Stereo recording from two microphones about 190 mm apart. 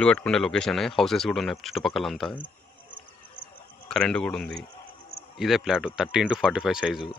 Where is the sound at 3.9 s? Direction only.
5° left (ahead or behind).